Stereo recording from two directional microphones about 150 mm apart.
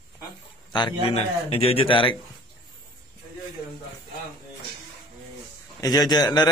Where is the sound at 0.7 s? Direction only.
35° left (ahead or behind).